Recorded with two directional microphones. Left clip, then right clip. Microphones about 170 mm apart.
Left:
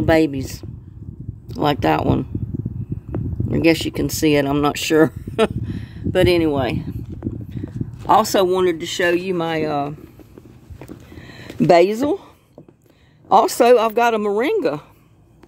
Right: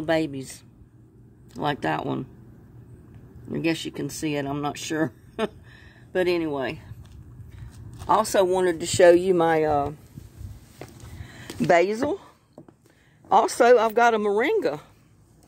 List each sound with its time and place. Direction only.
0.0 s speech: 45° left (ahead or behind)
3.4 s speech: 55° left (ahead or behind)
8.1 s speech: 50° left (ahead or behind)
8.6 s speech: 20° right (ahead or behind); by 9.6 s 5° right (ahead or behind)
9.6 s speech: 15° left (ahead or behind)
11.1 s a sound: 50° left (ahead or behind)
13.3 s speech: 35° left (ahead or behind)